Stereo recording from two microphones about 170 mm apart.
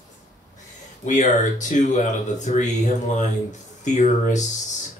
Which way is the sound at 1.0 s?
45° left (ahead or behind).